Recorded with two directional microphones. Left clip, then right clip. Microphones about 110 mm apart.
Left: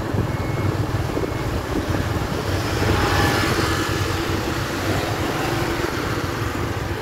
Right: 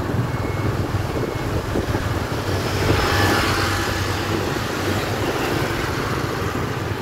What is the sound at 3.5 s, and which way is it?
Vehicle, 50° right (ahead or behind).